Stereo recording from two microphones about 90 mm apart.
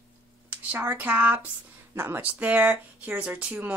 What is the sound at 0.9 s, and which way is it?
Speech, 20° right (ahead or behind).